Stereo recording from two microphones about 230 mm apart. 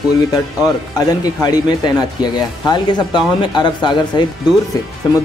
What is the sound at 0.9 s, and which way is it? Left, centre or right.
Speech, centre.